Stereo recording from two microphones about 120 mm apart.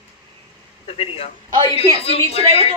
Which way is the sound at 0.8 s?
55° left (ahead or behind).